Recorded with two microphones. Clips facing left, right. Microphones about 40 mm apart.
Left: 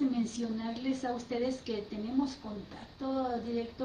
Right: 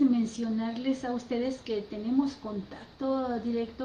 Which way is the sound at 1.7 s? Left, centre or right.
Right.